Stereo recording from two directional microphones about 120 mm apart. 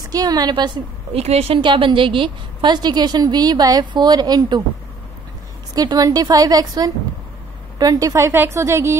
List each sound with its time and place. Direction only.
0.1 s a woman's voice: 30° right (ahead or behind)
1.1 s a woman's voice: 60° right (ahead or behind)
1.6 s a woman's voice: 40° right (ahead or behind)
5.8 s a woman's voice: 30° right (ahead or behind)